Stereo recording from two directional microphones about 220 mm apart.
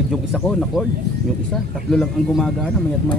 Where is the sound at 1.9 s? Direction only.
Centre (ahead or behind).